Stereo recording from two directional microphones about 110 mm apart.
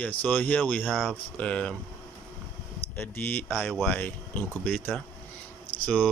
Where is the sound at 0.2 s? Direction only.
15° left (ahead or behind).